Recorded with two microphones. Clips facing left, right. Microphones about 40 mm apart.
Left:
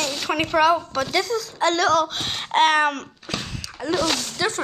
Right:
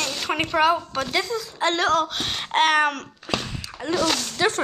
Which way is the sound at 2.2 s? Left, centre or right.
Centre.